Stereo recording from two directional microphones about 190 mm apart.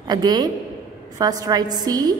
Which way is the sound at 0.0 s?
20° right (ahead or behind).